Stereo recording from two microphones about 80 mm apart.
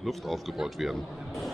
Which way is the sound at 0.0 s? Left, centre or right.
Centre.